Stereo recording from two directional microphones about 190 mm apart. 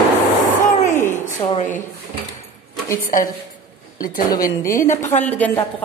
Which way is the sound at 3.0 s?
45° left (ahead or behind).